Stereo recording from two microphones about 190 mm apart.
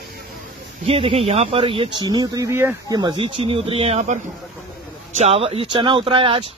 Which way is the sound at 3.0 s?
25° right (ahead or behind).